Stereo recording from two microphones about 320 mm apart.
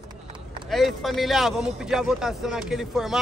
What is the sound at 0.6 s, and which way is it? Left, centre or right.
Speech, centre.